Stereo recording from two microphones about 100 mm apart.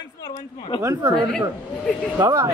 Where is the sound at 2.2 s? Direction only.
35° right (ahead or behind).